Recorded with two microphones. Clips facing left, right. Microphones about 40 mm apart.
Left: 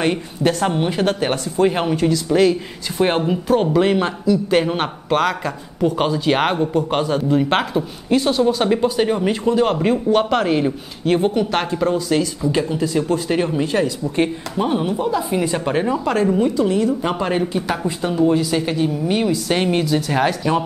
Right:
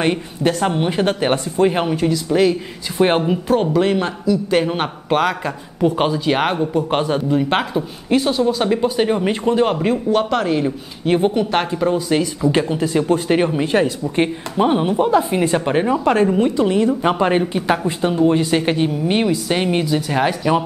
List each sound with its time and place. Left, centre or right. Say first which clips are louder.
0.0 s a man's voice: right 1 dB; centre
6.2 s a man's voice: even; centre
6.7 s speech: right 1 dB; centre
7.2 s a man's voice: even; centre
8.8 s speech: even; centre
9.6 s a man's voice: even; centre
11.1 s speech: right 1 dB; centre
12.4 s a woman's voice: right 2 dB; right
15.5 s a woman's voice: right 2 dB; centre
19.4 s a man's voice: even; centre